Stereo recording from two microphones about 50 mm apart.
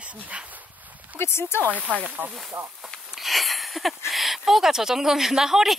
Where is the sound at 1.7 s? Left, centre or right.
Right.